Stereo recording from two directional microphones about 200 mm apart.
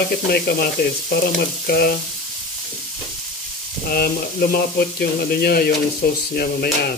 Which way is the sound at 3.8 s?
50° left (ahead or behind).